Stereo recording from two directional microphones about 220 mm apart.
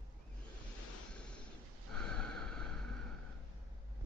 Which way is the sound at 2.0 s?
5° left (ahead or behind).